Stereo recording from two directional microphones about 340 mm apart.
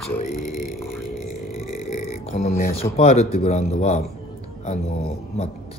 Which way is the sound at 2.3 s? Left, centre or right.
Left.